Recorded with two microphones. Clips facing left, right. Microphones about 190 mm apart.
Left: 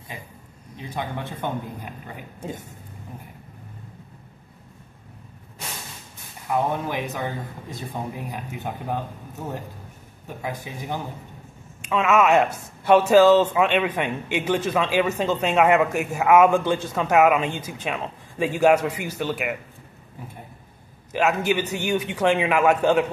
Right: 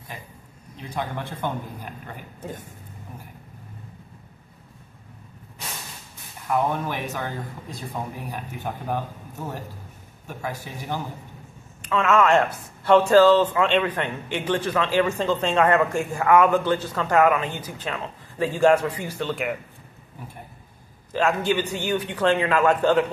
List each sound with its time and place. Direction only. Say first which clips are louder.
0.7 s speech: even; 15° left (ahead or behind)
6.5 s speech: even; 15° left (ahead or behind)
10.2 s speech: left 1 dB; 15° left (ahead or behind)
21.1 s speech: even; 10° left (ahead or behind)